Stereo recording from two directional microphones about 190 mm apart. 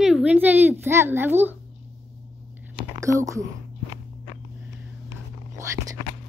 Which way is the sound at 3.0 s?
15° right (ahead or behind).